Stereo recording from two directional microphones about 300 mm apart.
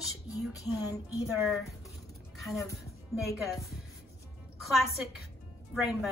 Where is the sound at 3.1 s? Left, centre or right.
Centre.